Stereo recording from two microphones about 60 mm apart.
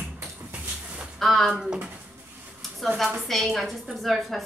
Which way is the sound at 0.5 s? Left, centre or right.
Right.